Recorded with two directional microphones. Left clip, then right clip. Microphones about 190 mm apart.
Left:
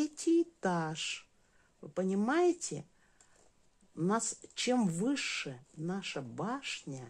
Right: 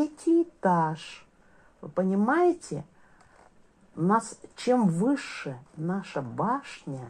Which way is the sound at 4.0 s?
40° left (ahead or behind).